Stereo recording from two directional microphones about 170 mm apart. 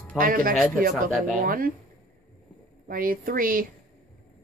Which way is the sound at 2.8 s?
55° right (ahead or behind).